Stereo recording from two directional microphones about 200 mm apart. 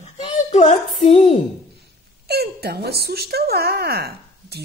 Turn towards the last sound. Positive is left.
turn(degrees=-55)  # may be behind; listen again after turning